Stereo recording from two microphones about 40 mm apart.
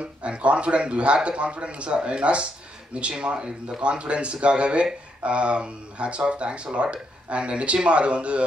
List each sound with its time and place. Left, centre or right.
0.0 s speech: right